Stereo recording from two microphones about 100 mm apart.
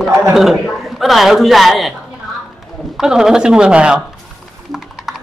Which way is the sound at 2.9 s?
5° right (ahead or behind).